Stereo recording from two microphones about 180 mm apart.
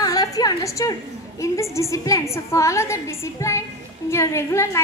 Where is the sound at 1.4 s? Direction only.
15° left (ahead or behind).